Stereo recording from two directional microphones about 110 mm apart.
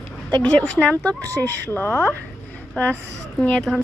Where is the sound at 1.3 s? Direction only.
15° left (ahead or behind).